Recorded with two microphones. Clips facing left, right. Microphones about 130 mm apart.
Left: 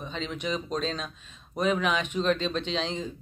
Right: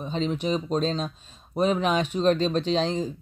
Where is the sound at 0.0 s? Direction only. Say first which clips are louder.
Right 6 dB; 35° right (ahead or behind).